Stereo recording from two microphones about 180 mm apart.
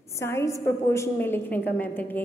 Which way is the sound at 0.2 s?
15° left (ahead or behind).